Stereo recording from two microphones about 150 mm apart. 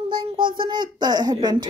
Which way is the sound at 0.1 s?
35° right (ahead or behind).